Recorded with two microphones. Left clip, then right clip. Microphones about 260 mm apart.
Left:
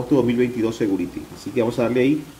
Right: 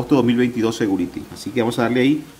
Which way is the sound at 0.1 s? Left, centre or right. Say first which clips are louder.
Right 1 dB; right.